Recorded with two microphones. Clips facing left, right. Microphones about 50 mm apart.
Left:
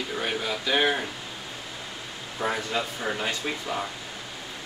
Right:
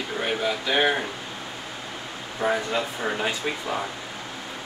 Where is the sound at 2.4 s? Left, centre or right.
Centre.